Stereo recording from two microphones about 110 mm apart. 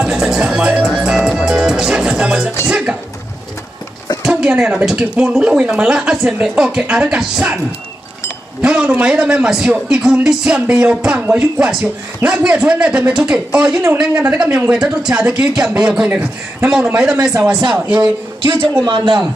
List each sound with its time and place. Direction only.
0.0 s music: 5° right (ahead or behind)
2.6 s a sound: 10° right (ahead or behind)
4.2 s speech: 10° right (ahead or behind)
8.6 s speech: 10° right (ahead or behind)
18.9 s speech: 45° right (ahead or behind)